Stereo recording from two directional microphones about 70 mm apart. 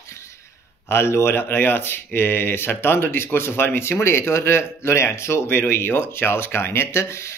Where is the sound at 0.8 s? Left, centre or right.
Left.